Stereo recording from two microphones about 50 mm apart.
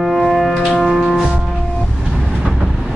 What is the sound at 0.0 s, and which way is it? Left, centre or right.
Music, centre.